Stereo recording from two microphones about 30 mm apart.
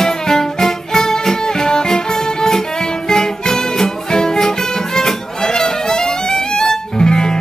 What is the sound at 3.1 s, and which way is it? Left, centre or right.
Music, left.